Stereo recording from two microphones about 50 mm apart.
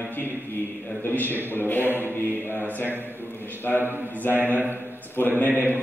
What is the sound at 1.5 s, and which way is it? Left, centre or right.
Mantra, left.